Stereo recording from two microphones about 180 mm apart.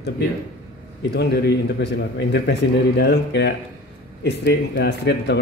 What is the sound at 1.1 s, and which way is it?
Speech, 65° left (ahead or behind).